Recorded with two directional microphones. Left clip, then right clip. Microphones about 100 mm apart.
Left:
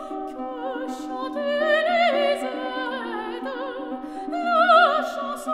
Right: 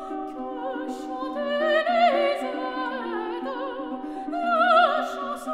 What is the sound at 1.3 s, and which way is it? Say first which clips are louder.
Music: left 2 dB; 50° left (ahead or behind).